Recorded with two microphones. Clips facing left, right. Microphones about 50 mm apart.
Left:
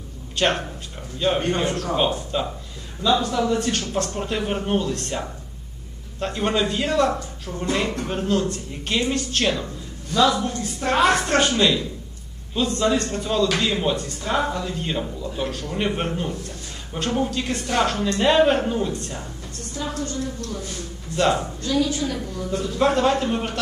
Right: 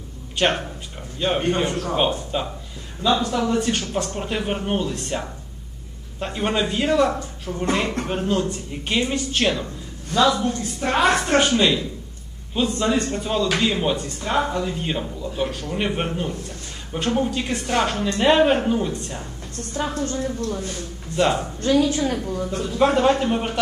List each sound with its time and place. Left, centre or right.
0.4 s a man's voice: centre
1.2 s a man's voice: centre
14.0 s speech: right
14.5 s a man's voice: centre
19.9 s a woman's voice: right
21.2 s a man's voice: centre
21.5 s a woman's voice: right
22.6 s a man's voice: centre